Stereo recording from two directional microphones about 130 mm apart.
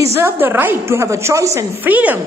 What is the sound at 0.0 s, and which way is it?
A woman's voice, 20° right (ahead or behind).